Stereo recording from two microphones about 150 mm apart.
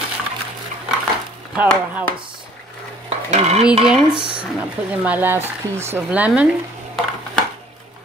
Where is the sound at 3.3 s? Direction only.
45° right (ahead or behind).